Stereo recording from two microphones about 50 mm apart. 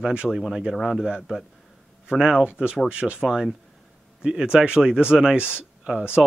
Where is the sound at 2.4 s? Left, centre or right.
Right.